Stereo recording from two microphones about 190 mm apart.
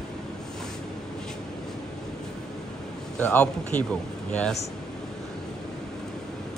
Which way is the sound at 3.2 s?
5° left (ahead or behind).